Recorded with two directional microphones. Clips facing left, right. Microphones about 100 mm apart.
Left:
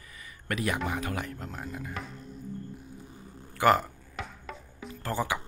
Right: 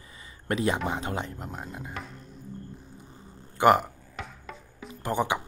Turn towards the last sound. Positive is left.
turn(degrees=-20)  # may be behind; listen again after turning